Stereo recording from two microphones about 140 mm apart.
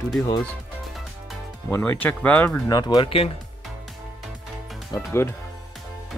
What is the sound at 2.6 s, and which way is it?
Speech, 30° left (ahead or behind).